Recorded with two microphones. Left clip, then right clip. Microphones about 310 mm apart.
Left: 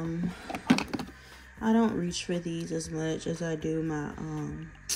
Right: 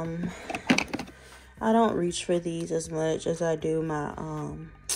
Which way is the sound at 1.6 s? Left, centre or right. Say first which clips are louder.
Right 5 dB; centre.